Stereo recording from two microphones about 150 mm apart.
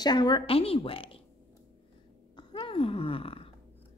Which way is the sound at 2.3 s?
35° left (ahead or behind).